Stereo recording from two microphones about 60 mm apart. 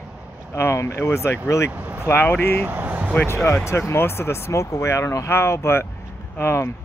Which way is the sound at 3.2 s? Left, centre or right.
Left.